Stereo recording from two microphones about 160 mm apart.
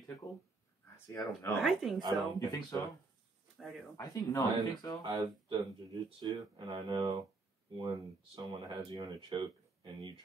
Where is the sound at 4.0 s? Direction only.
25° left (ahead or behind).